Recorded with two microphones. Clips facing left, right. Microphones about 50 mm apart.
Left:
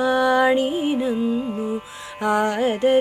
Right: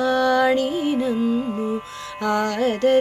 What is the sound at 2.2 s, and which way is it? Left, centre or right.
Music, centre.